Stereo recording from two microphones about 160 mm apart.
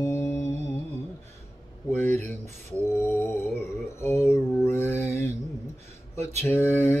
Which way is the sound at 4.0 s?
15° left (ahead or behind).